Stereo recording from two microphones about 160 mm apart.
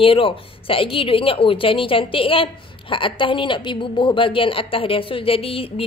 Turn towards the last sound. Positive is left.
turn(degrees=35)  # may be behind; listen again after turning